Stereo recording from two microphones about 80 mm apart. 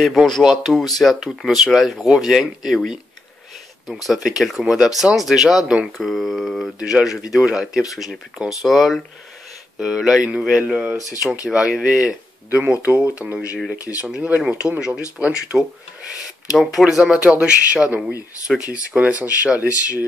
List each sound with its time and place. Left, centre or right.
0.0 s speech: centre